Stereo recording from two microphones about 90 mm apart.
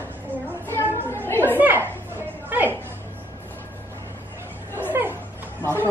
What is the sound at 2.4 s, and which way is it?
Music, 20° right (ahead or behind).